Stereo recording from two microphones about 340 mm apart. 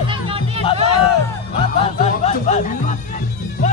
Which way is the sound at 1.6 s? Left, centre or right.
Centre.